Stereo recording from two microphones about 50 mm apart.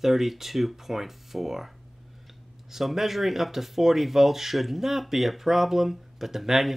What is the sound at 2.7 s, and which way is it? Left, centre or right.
Speech, centre.